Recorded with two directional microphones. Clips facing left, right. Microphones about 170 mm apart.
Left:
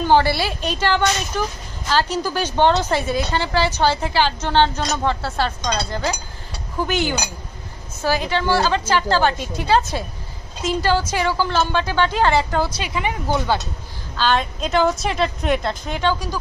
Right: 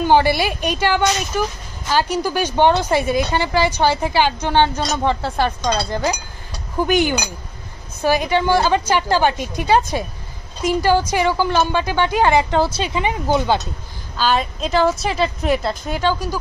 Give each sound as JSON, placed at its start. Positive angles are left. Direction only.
{"t": 0.0, "sound": "a woman's voice", "side_deg": -15}
{"t": 12.5, "sound": "speech", "side_deg": -30}
{"t": 14.1, "sound": "a woman's voice", "side_deg": -10}